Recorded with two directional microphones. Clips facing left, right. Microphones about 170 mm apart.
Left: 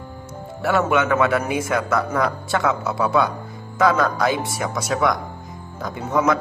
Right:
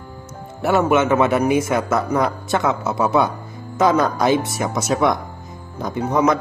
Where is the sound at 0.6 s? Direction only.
20° right (ahead or behind).